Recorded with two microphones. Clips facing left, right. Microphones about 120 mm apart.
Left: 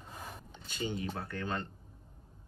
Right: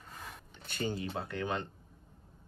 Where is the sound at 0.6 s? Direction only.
55° right (ahead or behind).